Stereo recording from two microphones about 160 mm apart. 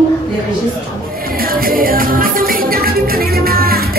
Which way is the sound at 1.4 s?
65° right (ahead or behind).